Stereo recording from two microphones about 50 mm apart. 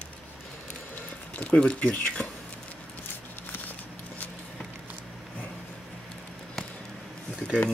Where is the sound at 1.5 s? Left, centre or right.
Left.